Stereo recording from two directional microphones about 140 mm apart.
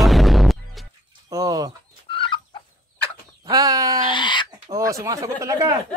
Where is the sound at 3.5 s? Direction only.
25° right (ahead or behind).